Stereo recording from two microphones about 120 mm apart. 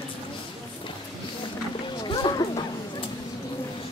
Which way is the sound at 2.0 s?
35° left (ahead or behind).